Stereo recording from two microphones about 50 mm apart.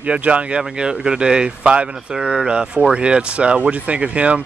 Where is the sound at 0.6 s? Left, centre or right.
Centre.